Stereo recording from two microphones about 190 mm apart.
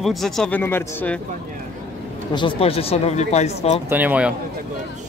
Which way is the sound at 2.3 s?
25° left (ahead or behind).